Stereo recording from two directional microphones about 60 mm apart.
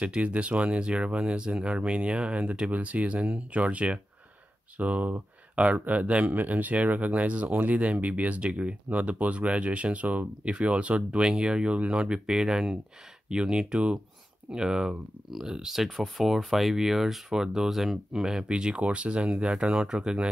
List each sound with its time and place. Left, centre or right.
0.0 s speech: right